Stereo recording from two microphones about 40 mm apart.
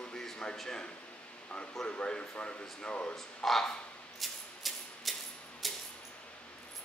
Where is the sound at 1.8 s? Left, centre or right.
Left.